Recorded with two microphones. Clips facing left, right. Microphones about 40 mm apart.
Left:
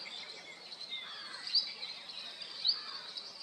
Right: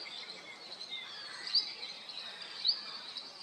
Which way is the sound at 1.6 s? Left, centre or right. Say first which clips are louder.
Even; centre.